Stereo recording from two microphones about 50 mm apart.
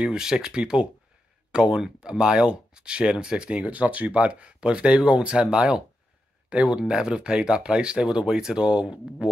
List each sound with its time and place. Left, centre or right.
0.0 s speech: centre